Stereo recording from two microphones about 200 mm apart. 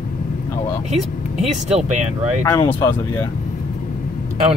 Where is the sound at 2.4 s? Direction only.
15° left (ahead or behind).